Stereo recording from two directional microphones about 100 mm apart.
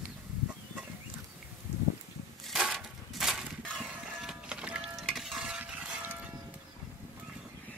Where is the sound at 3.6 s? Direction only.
10° left (ahead or behind).